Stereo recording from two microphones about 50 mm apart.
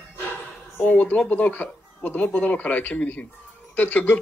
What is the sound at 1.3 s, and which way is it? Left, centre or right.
Speech, left.